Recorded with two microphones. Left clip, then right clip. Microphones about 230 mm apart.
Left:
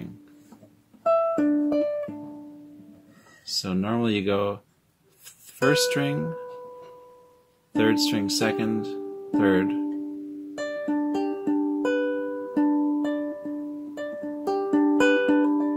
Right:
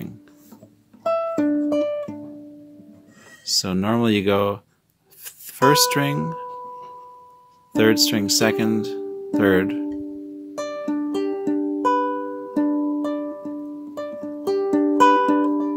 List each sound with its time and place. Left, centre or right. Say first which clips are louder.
1.0 s music: even; right
3.4 s speech: right 6 dB; right
7.7 s speech: right 5 dB; right
10.5 s music: right 2 dB; right